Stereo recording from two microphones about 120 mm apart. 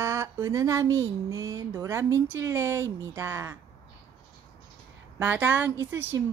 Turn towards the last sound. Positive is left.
turn(degrees=-25)  # may be behind; listen again after turning